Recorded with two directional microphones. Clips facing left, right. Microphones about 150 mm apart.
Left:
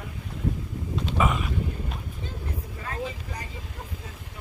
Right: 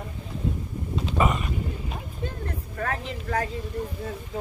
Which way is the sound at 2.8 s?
65° right (ahead or behind).